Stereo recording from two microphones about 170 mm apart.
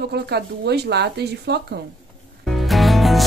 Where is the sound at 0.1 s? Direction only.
75° right (ahead or behind).